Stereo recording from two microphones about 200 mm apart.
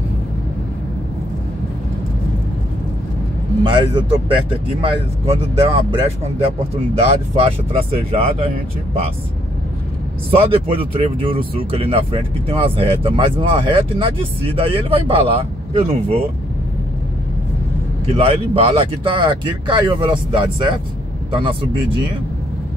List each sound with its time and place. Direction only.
3.6 s speech: 25° right (ahead or behind)
10.3 s speech: 30° right (ahead or behind)
18.0 s speech: 30° right (ahead or behind)